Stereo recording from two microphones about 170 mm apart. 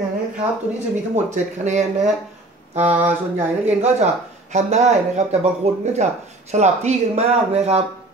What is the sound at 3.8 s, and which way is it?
Speech, 40° right (ahead or behind).